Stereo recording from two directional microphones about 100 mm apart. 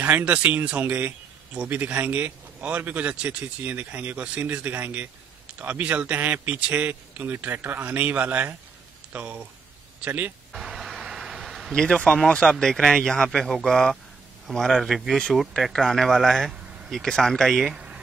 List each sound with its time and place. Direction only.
0.0 s speech: 15° right (ahead or behind)
10.5 s speech: 5° right (ahead or behind)